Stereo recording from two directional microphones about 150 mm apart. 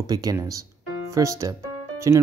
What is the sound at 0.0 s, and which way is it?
Speech, 25° right (ahead or behind).